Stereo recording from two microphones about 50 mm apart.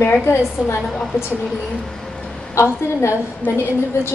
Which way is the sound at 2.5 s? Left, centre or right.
Left.